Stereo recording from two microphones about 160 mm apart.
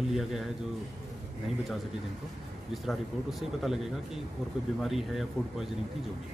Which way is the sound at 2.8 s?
Centre (ahead or behind).